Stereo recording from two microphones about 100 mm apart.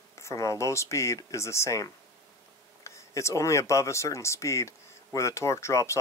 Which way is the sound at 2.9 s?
30° left (ahead or behind).